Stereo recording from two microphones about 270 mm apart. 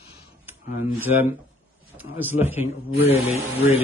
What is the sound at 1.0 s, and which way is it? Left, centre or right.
Speech, centre.